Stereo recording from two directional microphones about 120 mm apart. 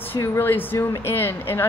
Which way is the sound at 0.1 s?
20° left (ahead or behind).